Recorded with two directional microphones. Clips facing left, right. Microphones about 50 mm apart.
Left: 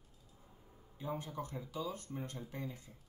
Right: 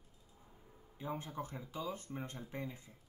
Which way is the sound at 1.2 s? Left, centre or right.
Right.